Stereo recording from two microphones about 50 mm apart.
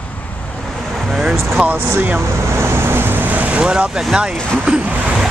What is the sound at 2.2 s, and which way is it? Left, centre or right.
Vehicle, right.